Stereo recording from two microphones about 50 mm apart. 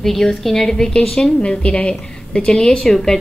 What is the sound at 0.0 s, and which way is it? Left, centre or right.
A woman's voice, centre.